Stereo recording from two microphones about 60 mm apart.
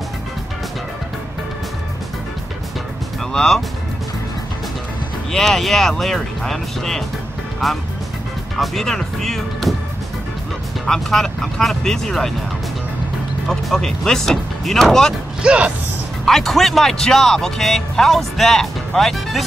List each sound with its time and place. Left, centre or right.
3.3 s speech: centre
5.3 s speech: centre
10.9 s speech: centre
13.5 s speech: centre
15.4 s speech: centre
16.3 s speech: centre